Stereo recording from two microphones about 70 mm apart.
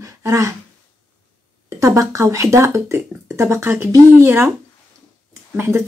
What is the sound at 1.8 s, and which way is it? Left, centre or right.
Speech, right.